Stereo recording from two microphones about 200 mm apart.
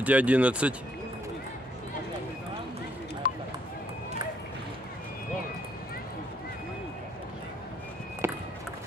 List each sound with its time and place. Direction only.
0.0 s speech: 5° right (ahead or behind)
3.2 s run: 45° left (ahead or behind)
8.2 s a sound: 10° right (ahead or behind)